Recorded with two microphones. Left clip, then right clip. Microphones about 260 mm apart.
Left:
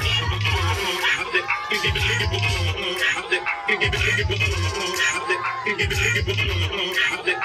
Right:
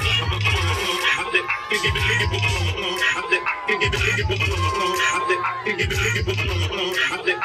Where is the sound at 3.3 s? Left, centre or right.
Centre.